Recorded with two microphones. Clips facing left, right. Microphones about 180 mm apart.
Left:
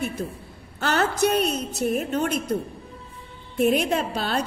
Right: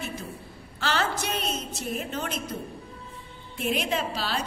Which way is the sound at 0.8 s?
55° left (ahead or behind).